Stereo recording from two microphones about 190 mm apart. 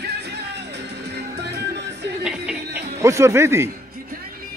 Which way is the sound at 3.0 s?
15° right (ahead or behind).